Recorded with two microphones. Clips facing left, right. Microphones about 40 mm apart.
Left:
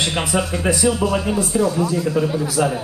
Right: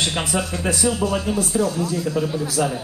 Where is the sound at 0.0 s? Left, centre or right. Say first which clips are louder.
Left 2 dB; centre.